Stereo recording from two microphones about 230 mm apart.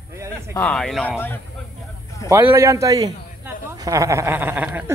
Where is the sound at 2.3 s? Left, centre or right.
Centre.